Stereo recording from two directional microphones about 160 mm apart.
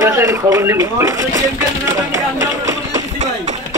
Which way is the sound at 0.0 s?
15° right (ahead or behind).